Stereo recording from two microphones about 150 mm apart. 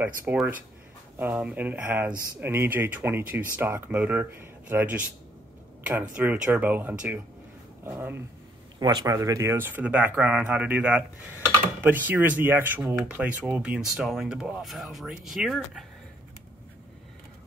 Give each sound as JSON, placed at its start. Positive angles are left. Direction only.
{"t": 0.0, "sound": "speech", "side_deg": -15}
{"t": 8.7, "sound": "speech", "side_deg": -25}